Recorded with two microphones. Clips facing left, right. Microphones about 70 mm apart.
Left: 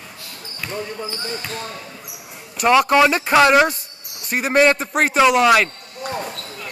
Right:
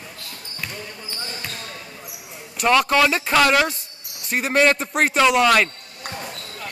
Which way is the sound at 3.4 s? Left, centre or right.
Left.